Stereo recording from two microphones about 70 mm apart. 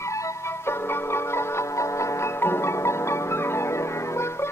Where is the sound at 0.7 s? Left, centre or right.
Left.